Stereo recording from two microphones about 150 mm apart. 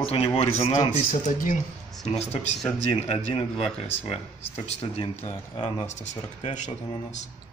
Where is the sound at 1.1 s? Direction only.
60° left (ahead or behind).